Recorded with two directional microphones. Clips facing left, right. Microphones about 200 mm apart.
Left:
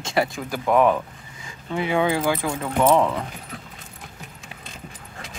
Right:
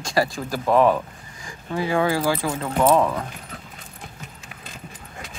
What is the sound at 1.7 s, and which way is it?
Speech, 20° left (ahead or behind).